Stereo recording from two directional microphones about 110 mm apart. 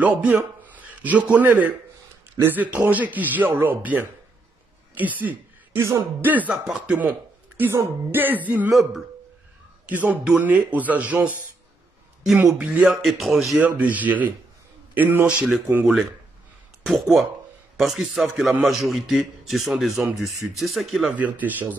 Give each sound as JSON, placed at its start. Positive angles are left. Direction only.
{"t": 0.0, "sound": "a man's voice", "side_deg": -15}
{"t": 9.8, "sound": "speech", "side_deg": -15}
{"t": 12.4, "sound": "a man's voice", "side_deg": -10}
{"t": 13.6, "sound": "speech", "side_deg": -15}
{"t": 16.8, "sound": "a man's voice", "side_deg": 0}
{"t": 21.2, "sound": "speech", "side_deg": -15}